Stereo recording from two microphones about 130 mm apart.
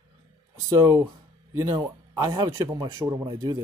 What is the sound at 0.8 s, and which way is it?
Speech, 30° right (ahead or behind).